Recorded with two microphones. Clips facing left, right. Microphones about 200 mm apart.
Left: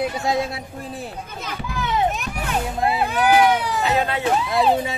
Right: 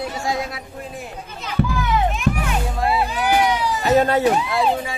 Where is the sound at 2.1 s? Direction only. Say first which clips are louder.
Right 7 dB; 40° left (ahead or behind).